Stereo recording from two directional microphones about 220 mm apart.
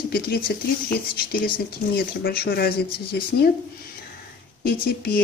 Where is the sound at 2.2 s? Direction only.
45° left (ahead or behind).